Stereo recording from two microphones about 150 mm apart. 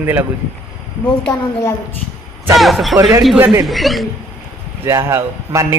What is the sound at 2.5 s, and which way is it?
A man's voice, centre (ahead or behind).